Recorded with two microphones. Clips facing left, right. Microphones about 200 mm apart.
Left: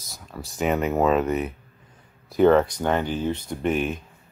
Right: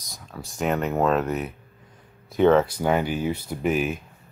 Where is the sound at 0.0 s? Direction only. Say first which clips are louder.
Left 1 dB; 5° left (ahead or behind).